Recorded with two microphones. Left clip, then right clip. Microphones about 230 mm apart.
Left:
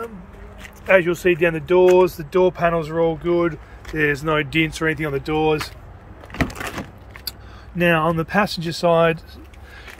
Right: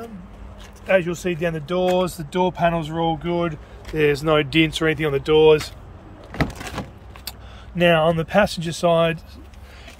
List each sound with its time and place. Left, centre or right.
0.8 s speech: centre
1.9 s speech: left
2.5 s speech: centre
7.7 s speech: centre